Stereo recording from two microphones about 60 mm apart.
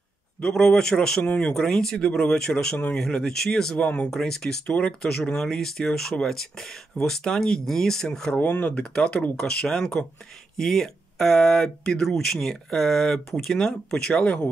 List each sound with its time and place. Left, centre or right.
0.4 s speech: centre
3.8 s speech: centre
4.1 s speech: centre
8.4 s speech: left; by 14.2 s centre
14.2 s speech: left